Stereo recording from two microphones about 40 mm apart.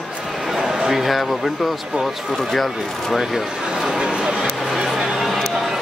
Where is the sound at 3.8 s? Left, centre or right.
Right.